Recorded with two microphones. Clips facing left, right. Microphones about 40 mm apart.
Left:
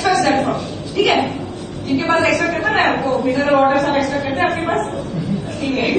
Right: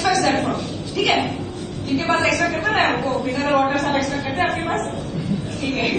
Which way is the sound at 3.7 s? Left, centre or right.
Left.